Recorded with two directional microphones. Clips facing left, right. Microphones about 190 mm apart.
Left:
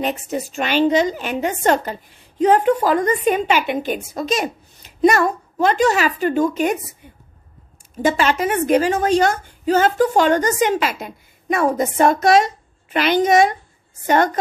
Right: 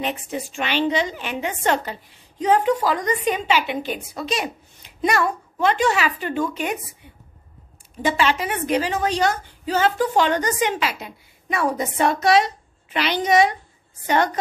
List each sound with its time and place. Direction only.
0.0 s a woman's voice: 45° left (ahead or behind)
2.4 s a woman's voice: 55° left (ahead or behind)
8.0 s a woman's voice: 45° left (ahead or behind)